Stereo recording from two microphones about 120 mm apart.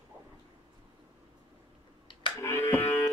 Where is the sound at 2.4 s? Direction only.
20° left (ahead or behind).